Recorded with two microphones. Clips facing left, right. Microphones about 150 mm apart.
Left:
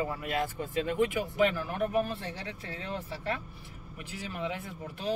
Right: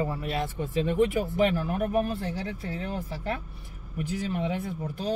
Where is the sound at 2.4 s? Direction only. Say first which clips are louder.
Right 6 dB; 40° right (ahead or behind).